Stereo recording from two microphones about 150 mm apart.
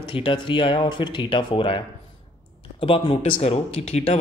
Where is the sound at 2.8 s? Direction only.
35° left (ahead or behind).